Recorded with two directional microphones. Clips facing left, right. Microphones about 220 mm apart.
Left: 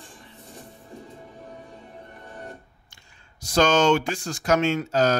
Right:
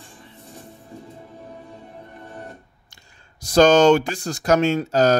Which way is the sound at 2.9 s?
40° right (ahead or behind).